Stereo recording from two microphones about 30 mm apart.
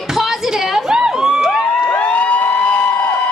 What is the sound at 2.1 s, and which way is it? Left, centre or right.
Emergency vehicle, left.